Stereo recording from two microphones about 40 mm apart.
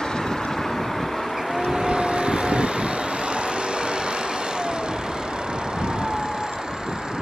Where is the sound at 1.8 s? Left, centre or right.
Right.